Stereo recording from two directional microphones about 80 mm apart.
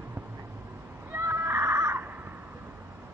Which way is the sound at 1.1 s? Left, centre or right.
Right.